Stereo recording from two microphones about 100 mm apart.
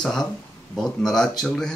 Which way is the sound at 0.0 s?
5° left (ahead or behind).